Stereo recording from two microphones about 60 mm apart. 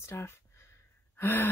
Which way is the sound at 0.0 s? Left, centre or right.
Left.